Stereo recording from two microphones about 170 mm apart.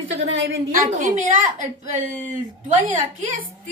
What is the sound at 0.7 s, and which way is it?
A woman's voice, 45° right (ahead or behind).